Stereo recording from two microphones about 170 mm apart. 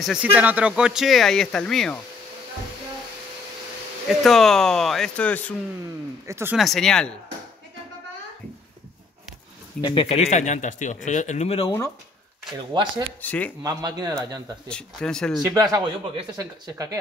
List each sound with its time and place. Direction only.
0.0 s speech: 5° right (ahead or behind)
4.2 s speech: centre (ahead or behind)
6.2 s speech: 15° right (ahead or behind)
6.5 s speech: centre (ahead or behind)
9.8 s speech: 30° left (ahead or behind)
12.7 s a man's voice: 25° right (ahead or behind)
13.2 s speech: 10° left (ahead or behind)
13.6 s a man's voice: 25° right (ahead or behind)
14.7 s speech: 5° left (ahead or behind)
15.5 s a man's voice: 20° right (ahead or behind)